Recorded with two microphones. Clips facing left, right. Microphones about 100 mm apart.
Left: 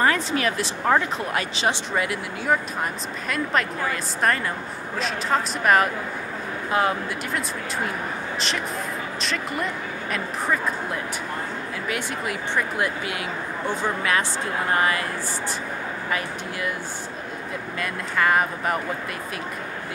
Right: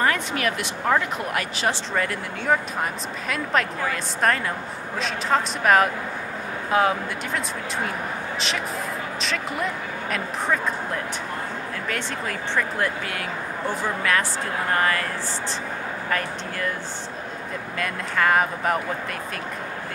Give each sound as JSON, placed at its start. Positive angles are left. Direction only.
{"t": 0.0, "sound": "speech", "side_deg": 30}
{"t": 1.6, "sound": "speech", "side_deg": 20}
{"t": 2.0, "sound": "speech", "side_deg": 5}
{"t": 9.2, "sound": "speech", "side_deg": 0}
{"t": 11.9, "sound": "speech", "side_deg": 15}
{"t": 16.1, "sound": "speech", "side_deg": 10}
{"t": 17.7, "sound": "speech", "side_deg": 0}